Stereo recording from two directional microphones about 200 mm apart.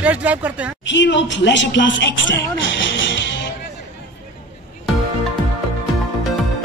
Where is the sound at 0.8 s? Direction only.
65° left (ahead or behind).